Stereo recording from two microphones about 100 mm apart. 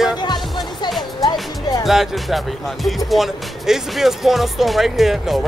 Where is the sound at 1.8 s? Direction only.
Centre (ahead or behind).